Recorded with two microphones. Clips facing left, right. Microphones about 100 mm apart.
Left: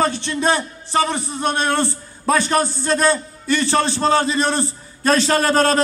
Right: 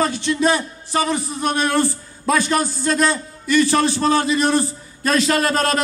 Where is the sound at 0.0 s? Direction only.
35° left (ahead or behind).